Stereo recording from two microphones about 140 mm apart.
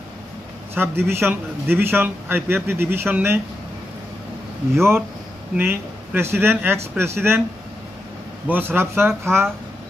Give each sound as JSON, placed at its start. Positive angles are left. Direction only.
{"t": 0.7, "sound": "a man's voice", "side_deg": -15}
{"t": 5.6, "sound": "a man's voice", "side_deg": -15}
{"t": 8.5, "sound": "a man's voice", "side_deg": -15}